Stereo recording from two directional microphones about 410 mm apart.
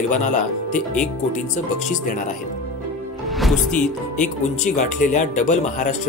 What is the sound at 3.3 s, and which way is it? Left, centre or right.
Speech, centre.